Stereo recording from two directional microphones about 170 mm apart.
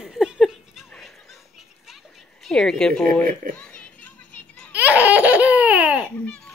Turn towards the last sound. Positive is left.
turn(degrees=5)  # may be behind; listen again after turning